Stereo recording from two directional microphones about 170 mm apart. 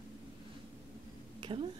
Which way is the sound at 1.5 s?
30° right (ahead or behind).